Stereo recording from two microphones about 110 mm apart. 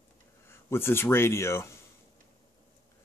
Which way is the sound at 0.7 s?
20° left (ahead or behind).